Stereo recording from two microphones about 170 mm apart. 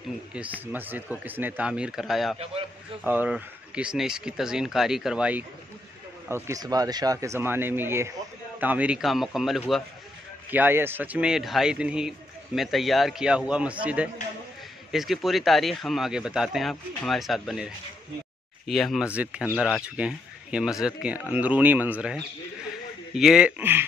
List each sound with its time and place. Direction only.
0.3 s speech: 5° right (ahead or behind)
10.5 s speech: 10° right (ahead or behind)